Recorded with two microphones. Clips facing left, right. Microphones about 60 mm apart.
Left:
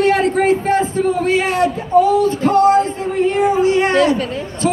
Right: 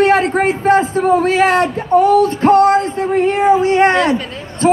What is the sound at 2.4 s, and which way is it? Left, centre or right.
Speech, right.